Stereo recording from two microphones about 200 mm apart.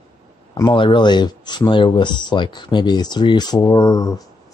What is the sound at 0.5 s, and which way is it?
Speech, 25° left (ahead or behind).